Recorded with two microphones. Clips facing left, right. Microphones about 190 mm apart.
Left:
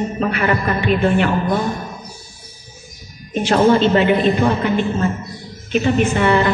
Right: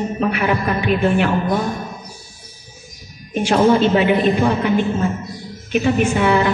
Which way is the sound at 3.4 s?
10° right (ahead or behind).